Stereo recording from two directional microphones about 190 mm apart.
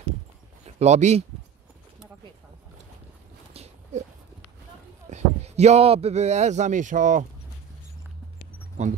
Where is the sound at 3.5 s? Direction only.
35° right (ahead or behind).